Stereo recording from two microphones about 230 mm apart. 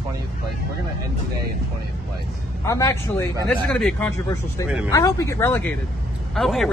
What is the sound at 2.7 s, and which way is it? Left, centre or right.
Speech, centre.